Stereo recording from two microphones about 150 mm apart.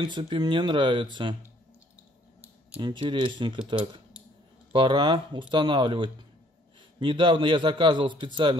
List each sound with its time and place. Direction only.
0.0 s a man's voice: 35° right (ahead or behind)
2.8 s a man's voice: 30° right (ahead or behind)